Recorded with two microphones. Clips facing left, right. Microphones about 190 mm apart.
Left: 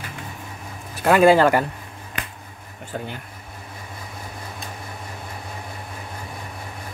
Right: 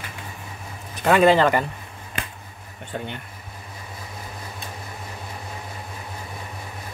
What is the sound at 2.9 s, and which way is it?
Speech, 5° left (ahead or behind).